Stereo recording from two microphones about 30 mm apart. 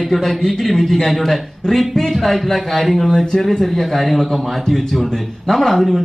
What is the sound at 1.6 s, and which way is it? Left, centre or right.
Speech, centre.